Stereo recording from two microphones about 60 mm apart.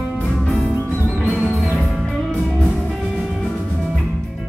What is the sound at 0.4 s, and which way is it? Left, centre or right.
Music, centre.